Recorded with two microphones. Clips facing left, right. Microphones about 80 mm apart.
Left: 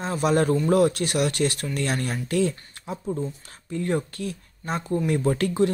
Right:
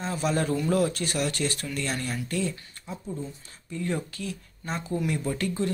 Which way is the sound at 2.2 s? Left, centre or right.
Left.